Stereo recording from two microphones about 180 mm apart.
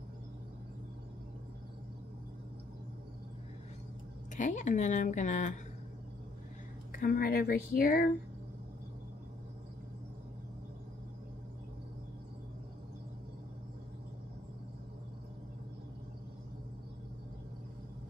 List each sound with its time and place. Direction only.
4.4 s speech: 45° left (ahead or behind)
6.9 s speech: 55° left (ahead or behind)